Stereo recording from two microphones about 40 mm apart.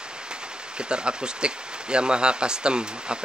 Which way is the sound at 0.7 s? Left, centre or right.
Right.